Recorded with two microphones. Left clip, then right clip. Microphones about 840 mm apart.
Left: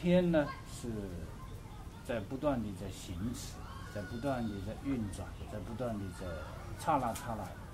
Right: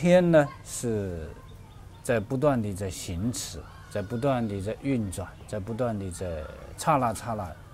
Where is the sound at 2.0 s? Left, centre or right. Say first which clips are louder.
Right 11 dB; right.